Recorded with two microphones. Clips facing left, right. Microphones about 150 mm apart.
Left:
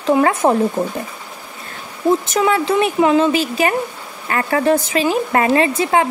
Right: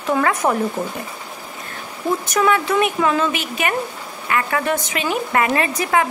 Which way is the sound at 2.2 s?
25° left (ahead or behind).